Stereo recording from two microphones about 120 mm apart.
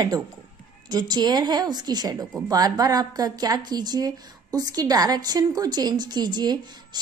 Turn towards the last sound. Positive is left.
turn(degrees=-35)  # may be behind; listen again after turning